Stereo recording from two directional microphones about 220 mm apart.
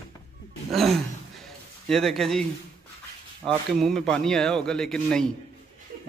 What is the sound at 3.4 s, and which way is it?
A man's voice, centre (ahead or behind).